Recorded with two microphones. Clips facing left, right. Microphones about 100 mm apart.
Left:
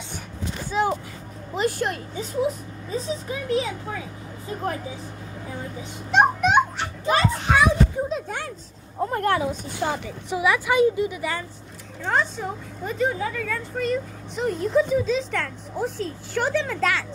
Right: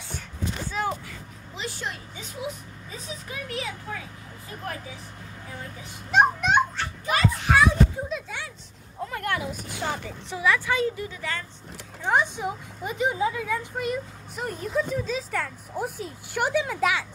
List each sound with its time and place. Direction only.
0.7 s a sound: 20° left (ahead or behind)
1.5 s a woman's voice: 50° left (ahead or behind)
2.1 s speech: 35° left (ahead or behind)
6.1 s music: 5° left (ahead or behind)
7.1 s a child's voice: 30° left (ahead or behind)
8.3 s speech: 50° left (ahead or behind); by 9.8 s 30° left (ahead or behind)
10.3 s a woman's voice: 15° left (ahead or behind)
12.0 s speech: 15° right (ahead or behind)